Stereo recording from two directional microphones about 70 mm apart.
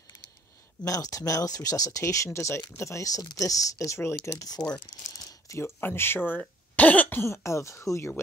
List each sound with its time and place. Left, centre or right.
0.8 s speech: left
2.0 s speech: left
5.1 s a sound: left
5.8 s speech: left
6.8 s cough: left
7.2 s speech: left